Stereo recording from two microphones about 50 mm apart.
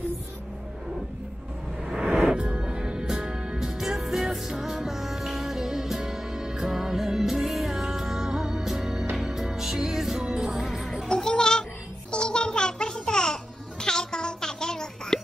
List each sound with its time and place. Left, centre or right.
1.9 s music: centre
11.1 s music: centre
12.1 s babbling: centre